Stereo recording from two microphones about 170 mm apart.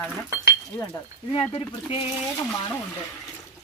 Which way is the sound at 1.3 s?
35° left (ahead or behind).